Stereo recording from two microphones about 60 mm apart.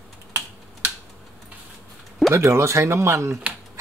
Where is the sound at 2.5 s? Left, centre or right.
Right.